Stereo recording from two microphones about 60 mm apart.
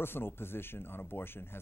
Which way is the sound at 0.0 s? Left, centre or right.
Left.